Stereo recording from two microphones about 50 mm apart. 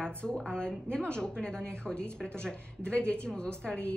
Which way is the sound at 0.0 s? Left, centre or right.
Centre.